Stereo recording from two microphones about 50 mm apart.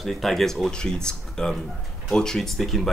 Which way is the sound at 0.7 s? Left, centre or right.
Centre.